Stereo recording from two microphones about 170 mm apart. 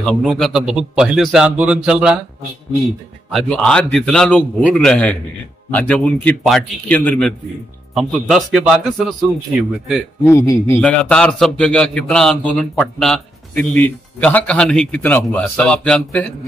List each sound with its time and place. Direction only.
0.2 s a man's voice: centre (ahead or behind)
3.3 s a man's voice: 5° left (ahead or behind)
10.3 s a man's voice: 20° left (ahead or behind)
10.8 s a man's voice: 5° left (ahead or behind)